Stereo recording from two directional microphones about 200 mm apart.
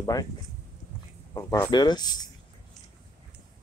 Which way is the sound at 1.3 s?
15° left (ahead or behind).